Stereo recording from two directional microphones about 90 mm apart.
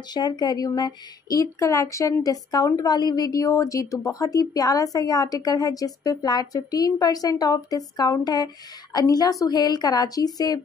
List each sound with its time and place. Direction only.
0.1 s speech: 50° left (ahead or behind)